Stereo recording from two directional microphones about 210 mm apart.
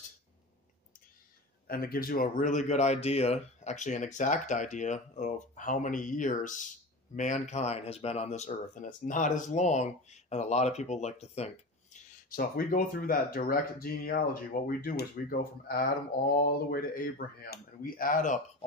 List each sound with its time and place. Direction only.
1.7 s speech: 45° left (ahead or behind)